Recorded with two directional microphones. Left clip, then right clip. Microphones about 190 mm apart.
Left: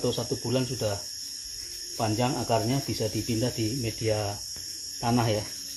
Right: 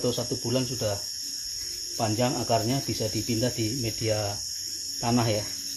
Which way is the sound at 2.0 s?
25° left (ahead or behind).